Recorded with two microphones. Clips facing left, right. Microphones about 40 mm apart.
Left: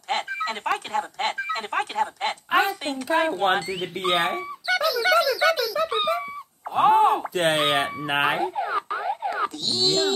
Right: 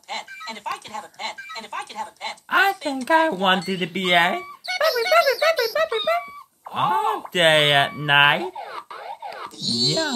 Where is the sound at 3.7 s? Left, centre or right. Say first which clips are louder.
Right 3 dB; right.